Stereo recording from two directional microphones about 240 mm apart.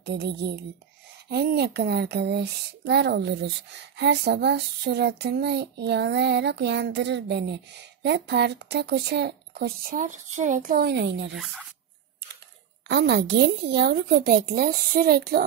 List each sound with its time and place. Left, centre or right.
0.0 s speech: right
11.3 s speech: centre
12.8 s a woman's voice: right